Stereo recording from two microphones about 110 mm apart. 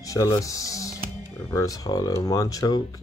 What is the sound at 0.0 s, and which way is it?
Speech, 30° left (ahead or behind).